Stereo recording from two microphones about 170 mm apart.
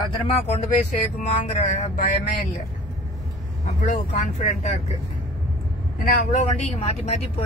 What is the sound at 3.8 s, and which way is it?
Speech, 50° left (ahead or behind).